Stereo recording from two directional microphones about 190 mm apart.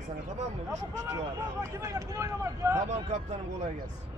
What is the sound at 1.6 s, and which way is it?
Speech, 15° right (ahead or behind).